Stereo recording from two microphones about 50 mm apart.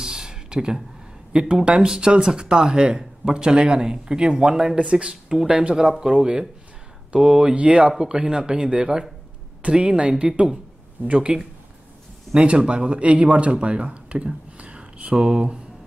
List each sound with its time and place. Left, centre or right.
0.0 s a sound: centre
1.5 s speech: centre
5.5 s speech: right
5.8 s speech: centre